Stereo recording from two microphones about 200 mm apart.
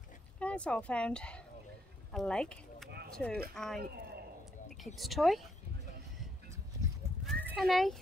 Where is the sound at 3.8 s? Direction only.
50° right (ahead or behind).